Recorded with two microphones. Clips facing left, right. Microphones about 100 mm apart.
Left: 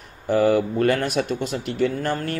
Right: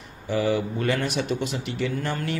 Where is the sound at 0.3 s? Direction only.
50° left (ahead or behind).